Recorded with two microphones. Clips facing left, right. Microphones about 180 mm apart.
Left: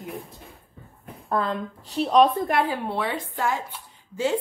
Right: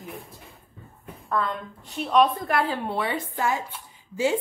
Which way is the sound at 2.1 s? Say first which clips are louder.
Left 2 dB; 25° left (ahead or behind).